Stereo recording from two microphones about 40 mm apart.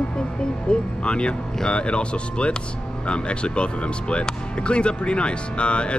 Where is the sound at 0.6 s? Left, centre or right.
Left.